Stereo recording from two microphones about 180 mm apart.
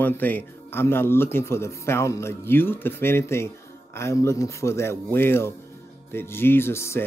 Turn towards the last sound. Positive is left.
turn(degrees=15)  # may be behind; listen again after turning